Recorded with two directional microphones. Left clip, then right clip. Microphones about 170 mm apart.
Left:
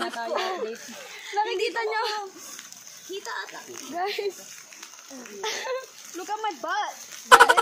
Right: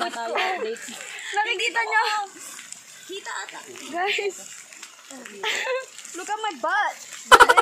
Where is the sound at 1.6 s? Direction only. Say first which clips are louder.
Right 5 dB; 35° right (ahead or behind).